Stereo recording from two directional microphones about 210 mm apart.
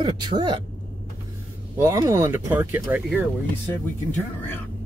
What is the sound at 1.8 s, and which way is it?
Speech, 15° right (ahead or behind).